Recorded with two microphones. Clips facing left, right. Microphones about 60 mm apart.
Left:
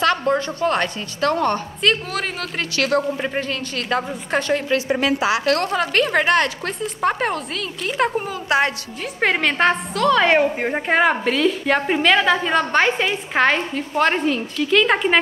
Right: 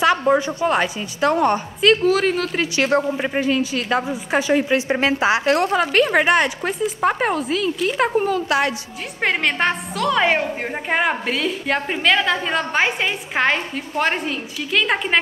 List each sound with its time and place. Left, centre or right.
0.0 s a woman's voice: centre
1.8 s a woman's voice: centre
2.7 s a woman's voice: right
3.2 s a woman's voice: centre
4.7 s a woman's voice: right
5.6 s a woman's voice: centre
8.5 s a woman's voice: left
9.2 s a woman's voice: centre
10.3 s a woman's voice: centre